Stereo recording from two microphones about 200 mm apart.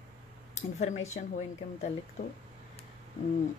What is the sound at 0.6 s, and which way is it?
Speech, 35° left (ahead or behind).